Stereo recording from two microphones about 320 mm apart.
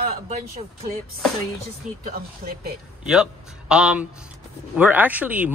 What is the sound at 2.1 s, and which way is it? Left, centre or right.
Speech, right.